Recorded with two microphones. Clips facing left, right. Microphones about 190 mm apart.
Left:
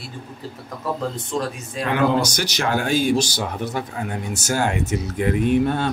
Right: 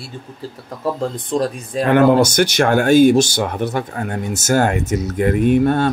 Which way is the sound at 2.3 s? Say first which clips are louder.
Right 8 dB; 55° right (ahead or behind).